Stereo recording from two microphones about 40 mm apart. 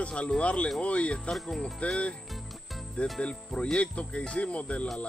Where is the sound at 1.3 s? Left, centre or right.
Centre.